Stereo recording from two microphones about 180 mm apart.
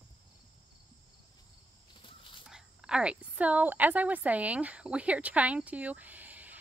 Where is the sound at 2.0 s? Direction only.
30° left (ahead or behind).